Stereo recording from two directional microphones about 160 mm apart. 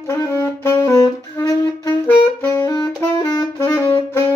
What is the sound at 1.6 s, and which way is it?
Music, 30° left (ahead or behind).